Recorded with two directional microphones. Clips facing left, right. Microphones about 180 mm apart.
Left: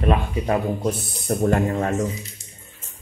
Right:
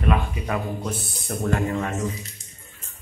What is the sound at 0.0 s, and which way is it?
Speech, 30° left (ahead or behind).